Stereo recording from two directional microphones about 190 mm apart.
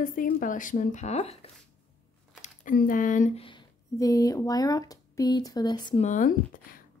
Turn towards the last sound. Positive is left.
turn(degrees=45)  # may be behind; listen again after turning